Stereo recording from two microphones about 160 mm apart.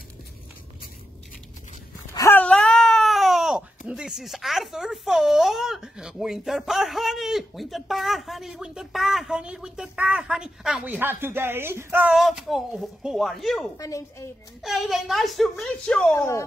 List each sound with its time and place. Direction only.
2.1 s speech: 15° left (ahead or behind); by 11.0 s 5° right (ahead or behind)
11.0 s speech: 15° right (ahead or behind)
13.7 s a woman's voice: 20° left (ahead or behind)
14.6 s speech: centre (ahead or behind); by 16.4 s 15° left (ahead or behind)